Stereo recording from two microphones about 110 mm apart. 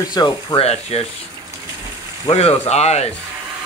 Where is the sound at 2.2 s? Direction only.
70° left (ahead or behind).